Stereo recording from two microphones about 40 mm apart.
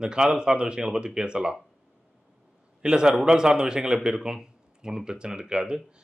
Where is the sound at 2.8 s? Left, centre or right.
Centre.